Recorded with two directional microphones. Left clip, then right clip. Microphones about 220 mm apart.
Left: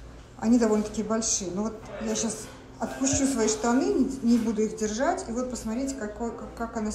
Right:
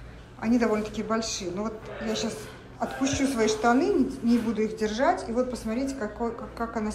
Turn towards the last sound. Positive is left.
turn(degrees=10)  # may be behind; listen again after turning